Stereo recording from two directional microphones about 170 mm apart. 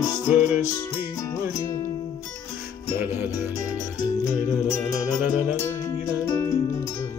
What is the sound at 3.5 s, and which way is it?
Music, 20° left (ahead or behind).